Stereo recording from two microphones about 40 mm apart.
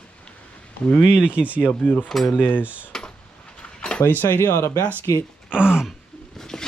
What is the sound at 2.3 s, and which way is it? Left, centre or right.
Speech, left.